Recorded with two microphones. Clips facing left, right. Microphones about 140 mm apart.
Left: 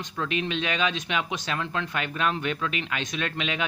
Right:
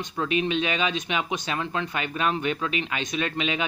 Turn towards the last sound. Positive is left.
turn(degrees=-5)  # may be behind; listen again after turning